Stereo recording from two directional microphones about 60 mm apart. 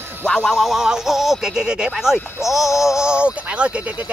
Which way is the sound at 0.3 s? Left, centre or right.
Centre.